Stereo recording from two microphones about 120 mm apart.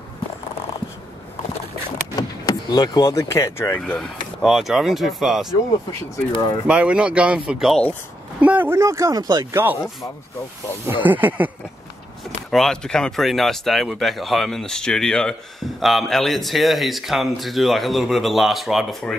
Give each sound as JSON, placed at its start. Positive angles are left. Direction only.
{"t": 2.1, "sound": "speech", "side_deg": 35}
{"t": 4.0, "sound": "speech", "side_deg": 0}
{"t": 6.3, "sound": "speech", "side_deg": 45}
{"t": 6.7, "sound": "speech", "side_deg": -10}
{"t": 11.1, "sound": "speech", "side_deg": -15}
{"t": 12.4, "sound": "speech", "side_deg": 5}